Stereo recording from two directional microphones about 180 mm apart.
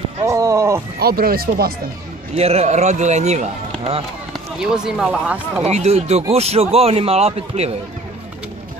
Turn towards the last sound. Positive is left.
turn(degrees=-35)  # may be behind; listen again after turning